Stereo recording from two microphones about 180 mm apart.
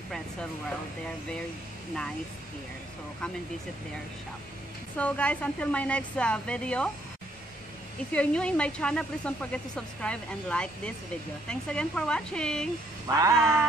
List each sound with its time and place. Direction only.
4.9 s a woman's voice: 5° left (ahead or behind)
8.1 s speech: 5° left (ahead or behind)
13.1 s a sound: 20° right (ahead or behind)